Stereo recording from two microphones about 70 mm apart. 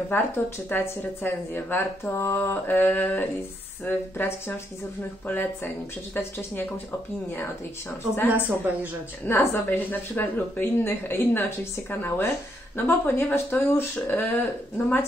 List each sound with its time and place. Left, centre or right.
0.1 s speech: left
8.3 s speech: right
9.2 s speech: left